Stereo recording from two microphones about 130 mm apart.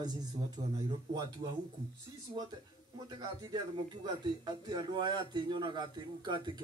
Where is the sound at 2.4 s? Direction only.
35° right (ahead or behind).